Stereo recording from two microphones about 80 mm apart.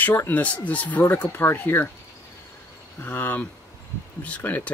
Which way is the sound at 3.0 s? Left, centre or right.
Left.